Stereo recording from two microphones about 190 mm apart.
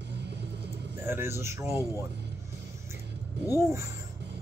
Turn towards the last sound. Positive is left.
turn(degrees=-15)  # may be behind; listen again after turning